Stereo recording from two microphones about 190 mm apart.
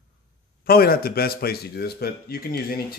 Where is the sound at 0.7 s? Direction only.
50° left (ahead or behind).